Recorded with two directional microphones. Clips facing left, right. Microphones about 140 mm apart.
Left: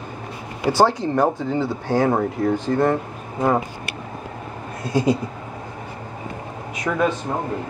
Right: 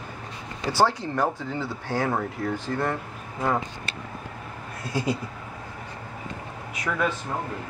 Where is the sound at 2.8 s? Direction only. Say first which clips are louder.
Left 8 dB; 40° left (ahead or behind).